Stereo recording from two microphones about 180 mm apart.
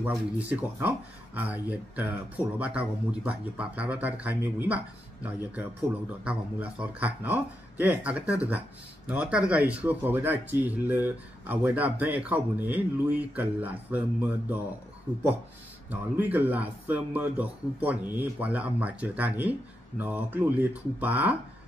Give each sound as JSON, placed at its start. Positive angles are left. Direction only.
{"t": 0.0, "sound": "speech", "side_deg": -10}
{"t": 15.9, "sound": "speech", "side_deg": -10}